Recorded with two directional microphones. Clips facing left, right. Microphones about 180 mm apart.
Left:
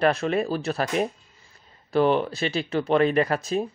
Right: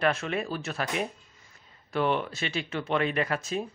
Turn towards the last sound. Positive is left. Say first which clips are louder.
# left 6 dB
turn(degrees=35)  # may be behind; listen again after turning